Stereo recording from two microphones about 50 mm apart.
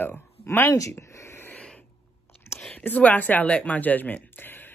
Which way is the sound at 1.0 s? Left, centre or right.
Left.